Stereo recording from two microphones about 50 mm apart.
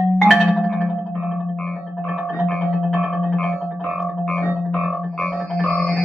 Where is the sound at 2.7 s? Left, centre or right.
Centre.